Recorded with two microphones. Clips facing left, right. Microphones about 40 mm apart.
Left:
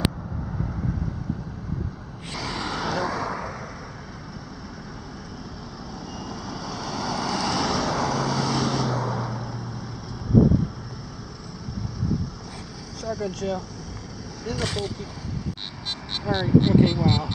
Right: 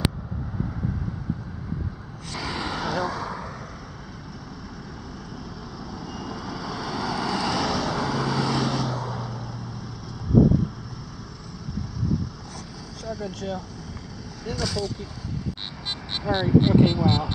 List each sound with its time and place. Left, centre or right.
2.3 s vehicle: centre
6.0 s vehicle: centre
13.0 s speech: centre
14.6 s speech: left
16.3 s speech: centre